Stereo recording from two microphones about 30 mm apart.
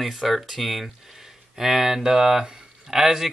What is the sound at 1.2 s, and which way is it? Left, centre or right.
Speech, centre.